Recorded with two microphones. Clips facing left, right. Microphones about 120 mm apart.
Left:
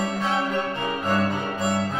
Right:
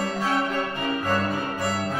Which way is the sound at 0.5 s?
15° left (ahead or behind).